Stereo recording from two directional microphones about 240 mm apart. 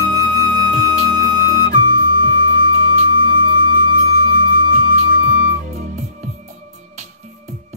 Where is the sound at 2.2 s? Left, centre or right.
Right.